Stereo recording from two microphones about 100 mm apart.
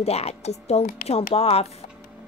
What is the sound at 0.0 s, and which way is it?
A woman's voice, 90° left.